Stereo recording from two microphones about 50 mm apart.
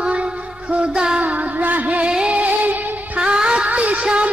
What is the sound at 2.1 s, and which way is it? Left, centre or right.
Music, centre.